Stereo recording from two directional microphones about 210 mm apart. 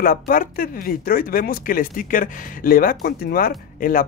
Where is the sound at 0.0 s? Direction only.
40° left (ahead or behind).